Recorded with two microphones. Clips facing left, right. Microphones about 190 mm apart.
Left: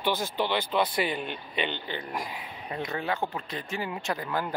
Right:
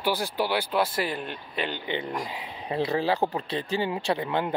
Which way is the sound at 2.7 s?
30° right (ahead or behind).